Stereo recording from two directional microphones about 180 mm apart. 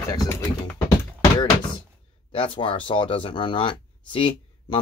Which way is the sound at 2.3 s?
30° left (ahead or behind).